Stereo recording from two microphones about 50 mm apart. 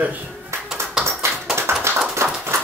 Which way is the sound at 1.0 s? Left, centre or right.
Right.